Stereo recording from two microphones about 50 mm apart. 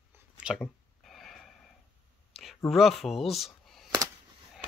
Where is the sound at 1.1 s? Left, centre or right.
Centre.